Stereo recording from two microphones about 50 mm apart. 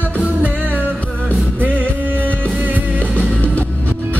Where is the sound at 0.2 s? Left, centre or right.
Right.